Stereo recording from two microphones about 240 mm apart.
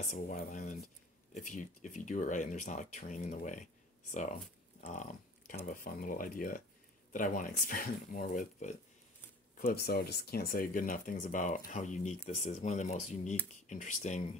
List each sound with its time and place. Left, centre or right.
0.1 s speech: left